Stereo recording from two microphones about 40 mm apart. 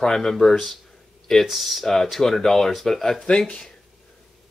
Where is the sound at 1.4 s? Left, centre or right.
Centre.